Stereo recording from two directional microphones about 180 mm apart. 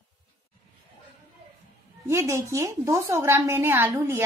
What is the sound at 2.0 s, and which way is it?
A woman's voice, 15° right (ahead or behind).